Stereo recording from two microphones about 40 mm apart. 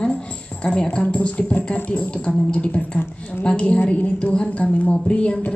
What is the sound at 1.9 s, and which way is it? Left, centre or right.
Speech, left.